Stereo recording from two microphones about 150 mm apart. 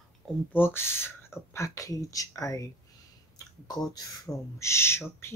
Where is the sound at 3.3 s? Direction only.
25° left (ahead or behind).